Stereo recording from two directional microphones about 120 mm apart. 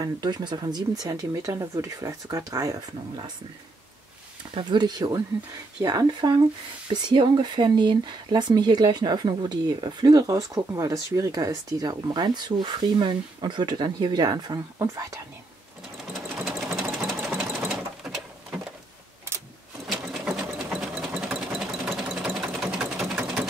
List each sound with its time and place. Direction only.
0.0 s speech: 35° right (ahead or behind)
4.6 s speech: 40° right (ahead or behind)
16.4 s sewing machine: centre (ahead or behind)
19.9 s sewing machine: 5° right (ahead or behind)